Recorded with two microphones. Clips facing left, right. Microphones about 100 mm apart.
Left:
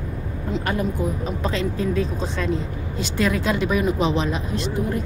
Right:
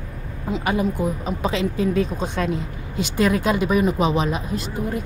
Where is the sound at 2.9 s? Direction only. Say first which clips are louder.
Right 3 dB; 50° right (ahead or behind).